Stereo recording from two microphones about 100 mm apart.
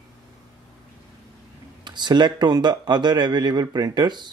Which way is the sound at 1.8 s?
45° right (ahead or behind).